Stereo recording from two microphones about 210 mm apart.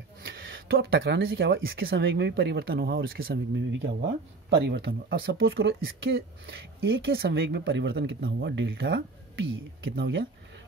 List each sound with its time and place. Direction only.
0.2 s a sound: 45° right (ahead or behind)
1.2 s speech: 65° right (ahead or behind)
1.9 s speech: 50° right (ahead or behind); by 7.3 s 70° right (ahead or behind)
7.3 s speech: 50° right (ahead or behind)